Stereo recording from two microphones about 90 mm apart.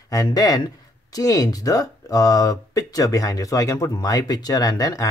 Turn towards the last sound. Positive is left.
turn(degrees=40)  # may be behind; listen again after turning